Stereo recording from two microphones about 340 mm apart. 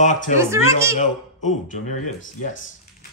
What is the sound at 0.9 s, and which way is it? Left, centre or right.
Speech, left.